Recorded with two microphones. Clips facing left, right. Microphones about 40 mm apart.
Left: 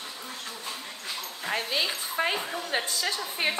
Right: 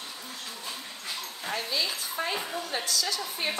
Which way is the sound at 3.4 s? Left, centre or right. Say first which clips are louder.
Left 4 dB; left.